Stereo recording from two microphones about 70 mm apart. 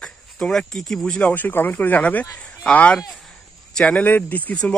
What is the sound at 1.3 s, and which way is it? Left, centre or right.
Speech, left.